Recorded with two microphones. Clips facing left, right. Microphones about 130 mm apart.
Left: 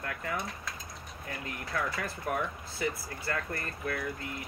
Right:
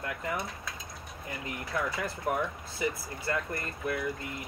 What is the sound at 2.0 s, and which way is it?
Speech, 20° right (ahead or behind).